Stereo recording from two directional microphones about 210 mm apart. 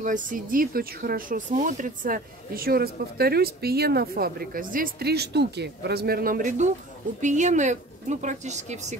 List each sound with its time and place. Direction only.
0.0 s speech: 40° right (ahead or behind)